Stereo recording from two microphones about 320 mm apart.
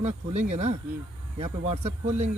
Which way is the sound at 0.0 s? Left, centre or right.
Right.